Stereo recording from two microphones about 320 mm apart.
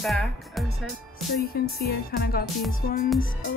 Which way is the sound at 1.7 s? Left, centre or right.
Left.